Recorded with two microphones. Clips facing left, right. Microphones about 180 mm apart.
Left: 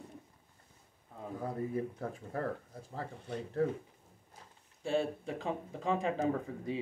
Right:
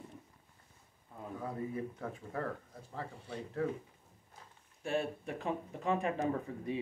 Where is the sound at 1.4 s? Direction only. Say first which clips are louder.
Left 3 dB; 35° left (ahead or behind).